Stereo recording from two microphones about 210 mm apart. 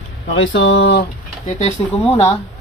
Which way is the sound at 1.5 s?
30° left (ahead or behind).